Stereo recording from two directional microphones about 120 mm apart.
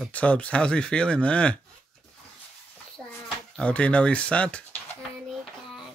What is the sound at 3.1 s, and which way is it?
Speech, 10° left (ahead or behind).